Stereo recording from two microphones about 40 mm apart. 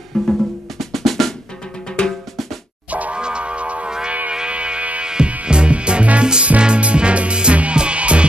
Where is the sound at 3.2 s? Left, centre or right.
Right.